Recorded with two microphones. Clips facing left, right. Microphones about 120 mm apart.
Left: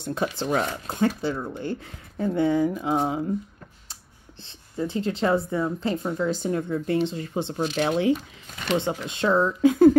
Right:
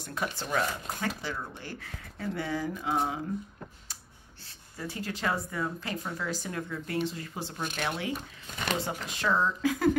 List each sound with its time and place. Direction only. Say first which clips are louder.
0.0 s speech: left 8 dB; 25° left (ahead or behind)
3.9 s a sound: left 3 dB; 25° left (ahead or behind)
5.5 s speech: left 8 dB; 30° left (ahead or behind)